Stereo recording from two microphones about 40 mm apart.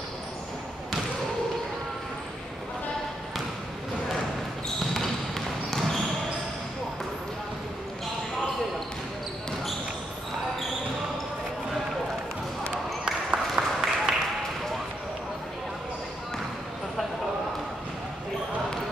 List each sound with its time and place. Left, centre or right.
5.7 s basketball bounce: centre
13.6 s applause: centre